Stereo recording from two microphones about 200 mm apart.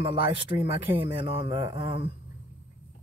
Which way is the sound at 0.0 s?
25° right (ahead or behind).